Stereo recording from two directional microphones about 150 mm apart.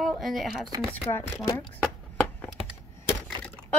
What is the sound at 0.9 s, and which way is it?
Speech, 15° left (ahead or behind).